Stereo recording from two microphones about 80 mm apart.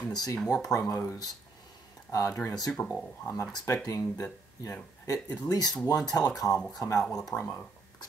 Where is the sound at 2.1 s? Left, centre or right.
Left.